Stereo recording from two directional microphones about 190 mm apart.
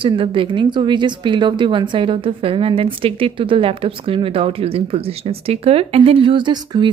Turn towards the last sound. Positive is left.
turn(degrees=-25)  # may be behind; listen again after turning